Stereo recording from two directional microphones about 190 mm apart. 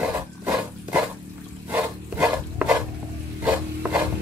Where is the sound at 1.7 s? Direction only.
5° right (ahead or behind).